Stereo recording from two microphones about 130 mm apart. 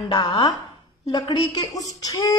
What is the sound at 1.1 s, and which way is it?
A woman's voice, 35° left (ahead or behind).